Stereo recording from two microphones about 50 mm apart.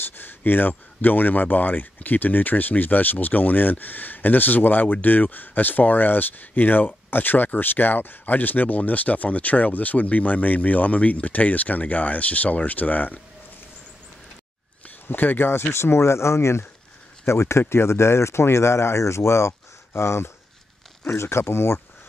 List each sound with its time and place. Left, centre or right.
0.0 s a sound: left
0.5 s speech: left
15.0 s speech: left